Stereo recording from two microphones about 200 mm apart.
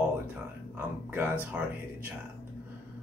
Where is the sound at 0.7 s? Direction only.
10° right (ahead or behind).